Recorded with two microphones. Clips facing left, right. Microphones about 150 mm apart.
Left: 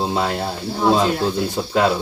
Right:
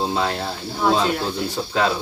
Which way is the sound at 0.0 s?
10° left (ahead or behind).